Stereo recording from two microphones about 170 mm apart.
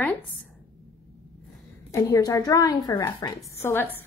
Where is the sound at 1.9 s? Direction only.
20° left (ahead or behind).